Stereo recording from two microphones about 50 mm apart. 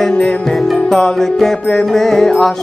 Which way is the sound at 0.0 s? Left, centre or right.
Centre.